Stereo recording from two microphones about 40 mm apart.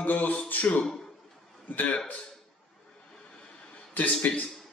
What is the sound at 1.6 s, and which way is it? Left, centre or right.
Speech, left.